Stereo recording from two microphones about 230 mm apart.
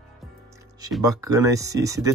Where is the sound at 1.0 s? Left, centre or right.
Centre.